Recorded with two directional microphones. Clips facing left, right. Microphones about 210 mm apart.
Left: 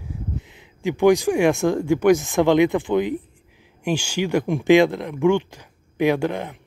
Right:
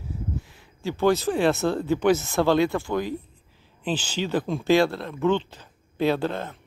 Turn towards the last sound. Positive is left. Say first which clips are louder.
# left 3 dB
turn(degrees=15)  # may be behind; listen again after turning